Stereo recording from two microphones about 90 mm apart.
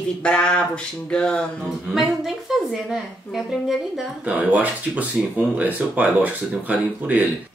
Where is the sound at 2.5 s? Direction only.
5° right (ahead or behind).